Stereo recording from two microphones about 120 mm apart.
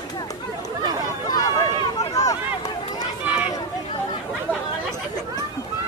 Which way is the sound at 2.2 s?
30° left (ahead or behind).